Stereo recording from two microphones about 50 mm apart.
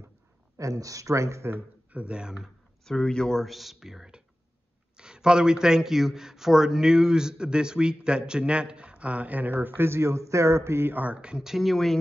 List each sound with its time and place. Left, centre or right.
0.6 s speech: right
1.9 s speech: right
2.8 s speech: centre; by 9.5 s right
9.5 s speech: right
10.9 s speech: right
11.1 s speech: centre
11.4 s speech: centre